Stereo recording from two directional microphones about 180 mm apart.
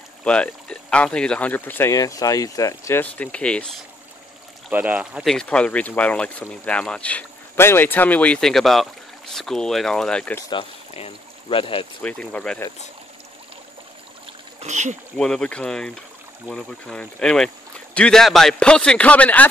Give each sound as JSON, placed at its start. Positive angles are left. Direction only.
{"t": 0.2, "sound": "speech", "side_deg": 5}
{"t": 4.6, "sound": "a man's voice", "side_deg": -10}
{"t": 10.5, "sound": "speech", "side_deg": 30}
{"t": 12.0, "sound": "speech", "side_deg": 5}
{"t": 14.6, "sound": "speech", "side_deg": -40}
{"t": 15.1, "sound": "a man's voice", "side_deg": 5}